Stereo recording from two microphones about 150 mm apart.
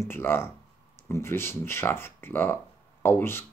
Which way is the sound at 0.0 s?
15° left (ahead or behind).